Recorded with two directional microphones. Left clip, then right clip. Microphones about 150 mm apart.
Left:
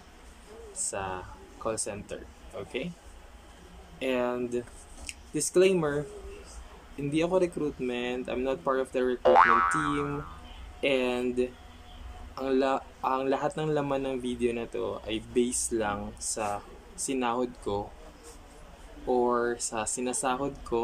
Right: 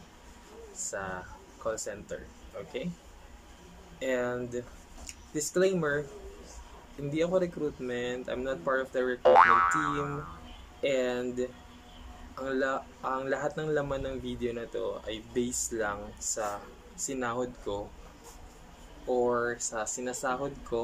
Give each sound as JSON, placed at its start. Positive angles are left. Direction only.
{"t": 0.8, "sound": "speech", "side_deg": 10}
{"t": 4.0, "sound": "speech", "side_deg": 15}
{"t": 7.1, "sound": "speech", "side_deg": 15}
{"t": 9.2, "sound": "boing", "side_deg": 0}
{"t": 10.8, "sound": "speech", "side_deg": 10}
{"t": 19.0, "sound": "speech", "side_deg": 15}